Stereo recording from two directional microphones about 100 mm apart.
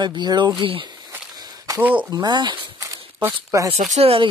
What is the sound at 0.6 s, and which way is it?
Speech, 60° right (ahead or behind).